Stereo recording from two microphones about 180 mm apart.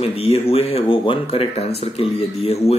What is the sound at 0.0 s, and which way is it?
Speech, 35° left (ahead or behind).